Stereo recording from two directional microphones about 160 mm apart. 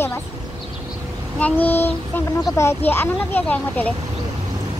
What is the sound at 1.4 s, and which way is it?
Speech, 10° left (ahead or behind).